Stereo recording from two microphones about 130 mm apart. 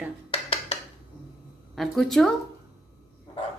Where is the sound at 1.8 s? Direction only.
Centre (ahead or behind).